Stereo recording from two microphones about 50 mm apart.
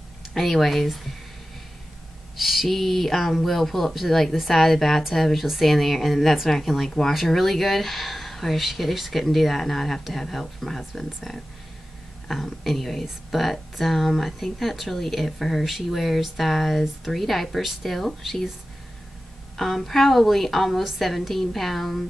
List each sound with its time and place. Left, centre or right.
0.3 s speech: centre
2.3 s speech: centre
12.3 s speech: centre
19.5 s speech: centre